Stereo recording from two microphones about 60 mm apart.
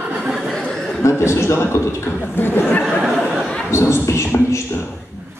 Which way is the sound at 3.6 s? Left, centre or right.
Left.